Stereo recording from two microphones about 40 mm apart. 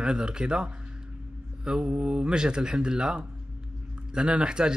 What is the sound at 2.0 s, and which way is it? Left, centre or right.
A man's voice, right.